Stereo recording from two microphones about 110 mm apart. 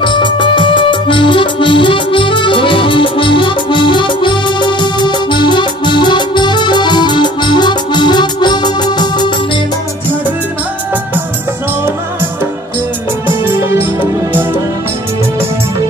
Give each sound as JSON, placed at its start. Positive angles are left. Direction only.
{"t": 0.0, "sound": "music", "side_deg": 45}